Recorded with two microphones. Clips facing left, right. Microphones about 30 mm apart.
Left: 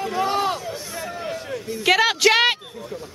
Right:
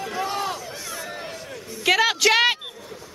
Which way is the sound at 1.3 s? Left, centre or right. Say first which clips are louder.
Left 6 dB; centre.